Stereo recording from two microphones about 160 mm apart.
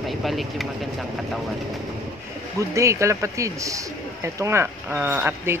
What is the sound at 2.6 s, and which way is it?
Speech, 20° right (ahead or behind).